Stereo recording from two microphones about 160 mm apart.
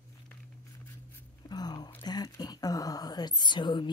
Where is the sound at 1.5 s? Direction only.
25° left (ahead or behind).